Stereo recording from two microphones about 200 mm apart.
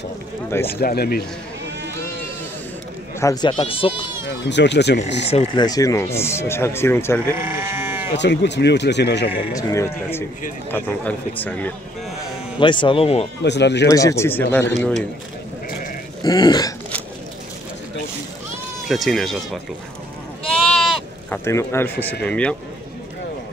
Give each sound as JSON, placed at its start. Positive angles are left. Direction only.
{"t": 0.7, "sound": "speech", "side_deg": 50}
{"t": 3.2, "sound": "speech", "side_deg": 20}
{"t": 4.5, "sound": "speech", "side_deg": 60}
{"t": 5.2, "sound": "speech", "side_deg": 30}
{"t": 7.2, "sound": "sheep", "side_deg": -10}
{"t": 8.1, "sound": "speech", "side_deg": 60}
{"t": 9.5, "sound": "speech", "side_deg": 15}
{"t": 12.5, "sound": "speech", "side_deg": 25}
{"t": 13.4, "sound": "speech", "side_deg": 60}
{"t": 13.8, "sound": "speech", "side_deg": 15}
{"t": 16.2, "sound": "speech", "side_deg": 20}
{"t": 18.9, "sound": "speech", "side_deg": 0}
{"t": 20.6, "sound": "sheep", "side_deg": 0}
{"t": 21.5, "sound": "speech", "side_deg": 15}